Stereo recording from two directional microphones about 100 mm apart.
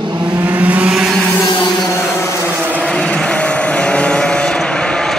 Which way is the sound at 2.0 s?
25° left (ahead or behind).